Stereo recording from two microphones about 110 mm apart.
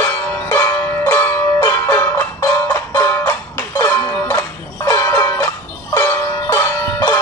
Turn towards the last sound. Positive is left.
turn(degrees=25)  # may be behind; listen again after turning